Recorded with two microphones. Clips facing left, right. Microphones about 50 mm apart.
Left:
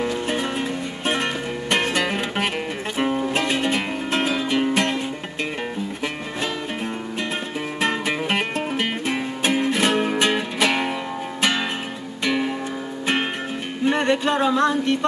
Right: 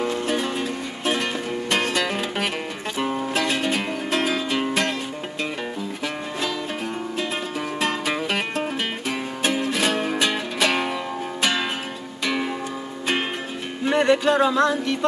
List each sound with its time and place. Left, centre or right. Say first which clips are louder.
0.3 s music: even; left
8.2 s music: left 1 dB; left
10.6 s music: even; centre
13.8 s music: right 1 dB; centre
14.4 s a sound: even; centre